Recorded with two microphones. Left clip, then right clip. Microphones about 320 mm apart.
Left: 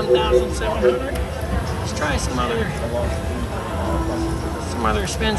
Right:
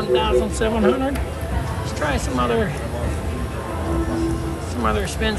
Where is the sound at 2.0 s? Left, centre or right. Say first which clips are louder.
Right 1 dB; centre.